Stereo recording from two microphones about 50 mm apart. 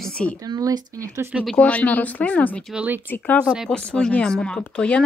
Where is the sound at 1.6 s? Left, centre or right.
Left.